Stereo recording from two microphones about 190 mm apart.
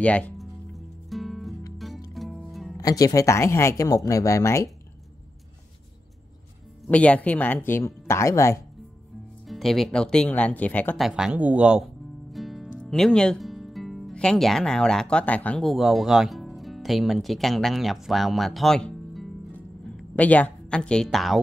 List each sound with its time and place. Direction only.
0.0 s music: 5° left (ahead or behind)
2.8 s speech: 20° left (ahead or behind)
6.9 s speech: 5° left (ahead or behind)
9.5 s speech: centre (ahead or behind)
11.1 s speech: 5° right (ahead or behind)